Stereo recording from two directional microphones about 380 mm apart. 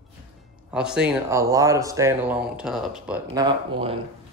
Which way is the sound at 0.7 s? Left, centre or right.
Centre.